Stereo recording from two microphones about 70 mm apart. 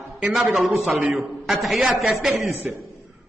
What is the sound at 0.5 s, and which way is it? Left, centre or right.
A man's voice, centre.